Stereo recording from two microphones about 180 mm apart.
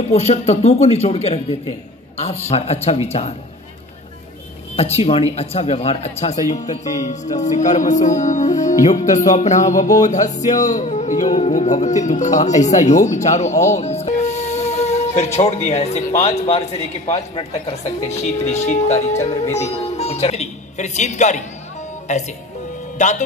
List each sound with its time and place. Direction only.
0.1 s music: 35° left (ahead or behind)
2.5 s music: 35° left (ahead or behind)
4.7 s music: 35° left (ahead or behind)
12.7 s speech: 40° left (ahead or behind)
16.1 s a man's voice: 20° left (ahead or behind)
16.3 s music: 35° left (ahead or behind)
19.4 s a man's voice: 15° left (ahead or behind)
19.8 s speech: 35° left (ahead or behind)
22.1 s music: 40° left (ahead or behind)
22.9 s speech: 40° left (ahead or behind)